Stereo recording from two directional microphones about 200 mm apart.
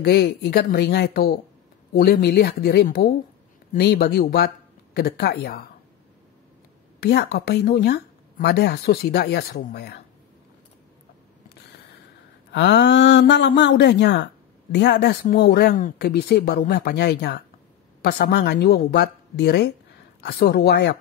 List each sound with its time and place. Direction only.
0.0 s speech: 55° left (ahead or behind)
7.0 s speech: 55° left (ahead or behind)
12.5 s a woman's voice: 60° left (ahead or behind)